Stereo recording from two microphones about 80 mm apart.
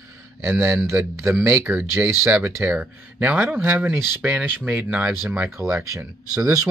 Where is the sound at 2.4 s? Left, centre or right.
Centre.